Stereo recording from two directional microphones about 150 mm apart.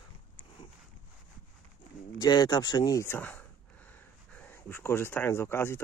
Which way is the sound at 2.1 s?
30° left (ahead or behind).